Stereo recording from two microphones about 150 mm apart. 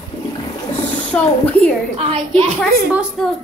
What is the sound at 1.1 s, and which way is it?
Speech, 10° left (ahead or behind).